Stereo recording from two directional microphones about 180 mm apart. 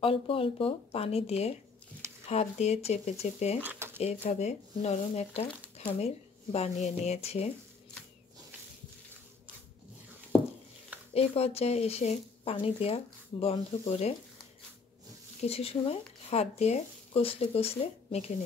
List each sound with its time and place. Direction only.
0.0 s speech: 30° left (ahead or behind)
3.6 s a sound: 15° right (ahead or behind)
4.0 s speech: 40° left (ahead or behind)
11.1 s speech: 35° left (ahead or behind)
15.4 s speech: 35° left (ahead or behind)